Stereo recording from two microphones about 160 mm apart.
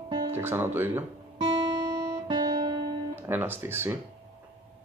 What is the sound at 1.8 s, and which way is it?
Guitar, 20° right (ahead or behind).